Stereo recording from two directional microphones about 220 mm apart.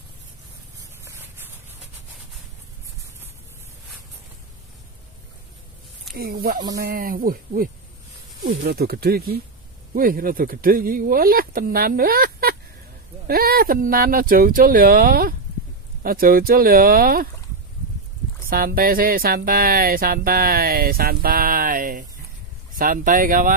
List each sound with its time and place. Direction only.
6.1 s speech: 45° right (ahead or behind)
6.7 s music: 45° right (ahead or behind)
8.5 s speech: 45° right (ahead or behind)
9.9 s music: 40° right (ahead or behind)
18.5 s music: 40° right (ahead or behind)